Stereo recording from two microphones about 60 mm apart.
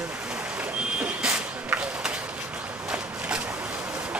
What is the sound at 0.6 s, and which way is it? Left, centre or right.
Vehicle, right.